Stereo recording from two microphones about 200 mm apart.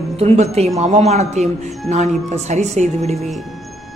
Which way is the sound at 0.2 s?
30° right (ahead or behind).